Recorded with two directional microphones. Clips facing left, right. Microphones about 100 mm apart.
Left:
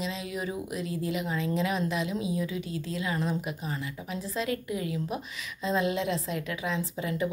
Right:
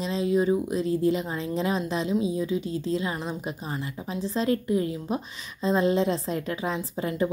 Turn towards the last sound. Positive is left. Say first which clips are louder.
# right 3 dB
turn(degrees=-35)  # may be behind; listen again after turning